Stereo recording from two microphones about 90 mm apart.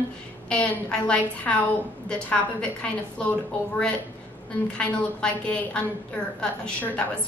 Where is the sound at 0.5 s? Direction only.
15° left (ahead or behind).